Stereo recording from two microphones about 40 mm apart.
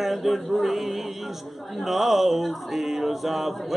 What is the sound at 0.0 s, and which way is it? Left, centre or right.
Male singing, centre.